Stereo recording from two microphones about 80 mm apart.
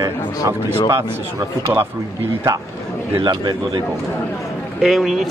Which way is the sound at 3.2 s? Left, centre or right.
Right.